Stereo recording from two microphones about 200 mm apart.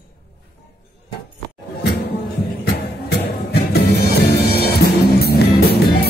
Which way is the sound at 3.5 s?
50° left (ahead or behind).